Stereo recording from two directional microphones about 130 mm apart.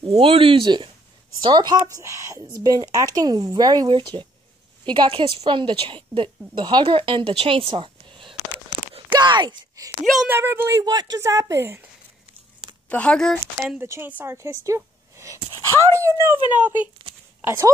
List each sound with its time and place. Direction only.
0.0 s a woman's voice: 45° right (ahead or behind)
10.2 s speech: 15° right (ahead or behind)
12.9 s speech: 5° left (ahead or behind)
13.7 s a woman's voice: 20° right (ahead or behind)